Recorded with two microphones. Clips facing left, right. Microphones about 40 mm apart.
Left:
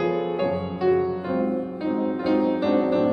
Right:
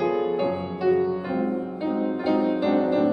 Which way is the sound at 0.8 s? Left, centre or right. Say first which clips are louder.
Even; centre.